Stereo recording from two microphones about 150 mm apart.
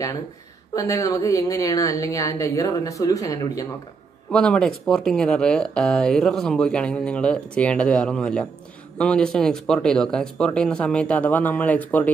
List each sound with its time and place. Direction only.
0.7 s a woman's voice: 20° left (ahead or behind)
4.3 s speech: 5° left (ahead or behind)